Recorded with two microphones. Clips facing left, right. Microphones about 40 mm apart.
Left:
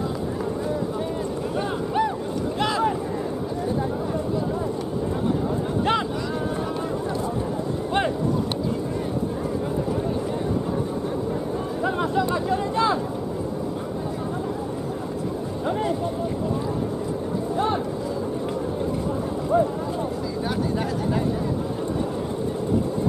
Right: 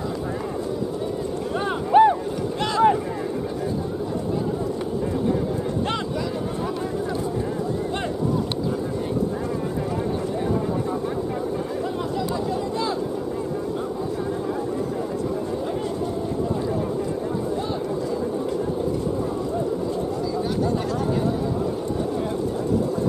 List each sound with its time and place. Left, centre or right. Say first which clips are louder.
1.9 s boat: right 11 dB; right
12.2 s chatter: left 2 dB; left